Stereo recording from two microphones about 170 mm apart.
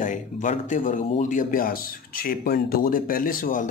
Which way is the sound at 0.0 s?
45° left (ahead or behind).